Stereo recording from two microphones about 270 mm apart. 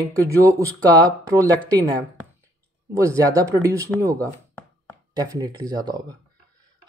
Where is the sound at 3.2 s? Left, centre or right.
Centre.